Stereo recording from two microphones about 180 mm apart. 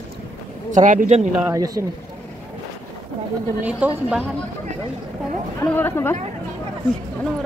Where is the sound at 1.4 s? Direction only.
15° right (ahead or behind).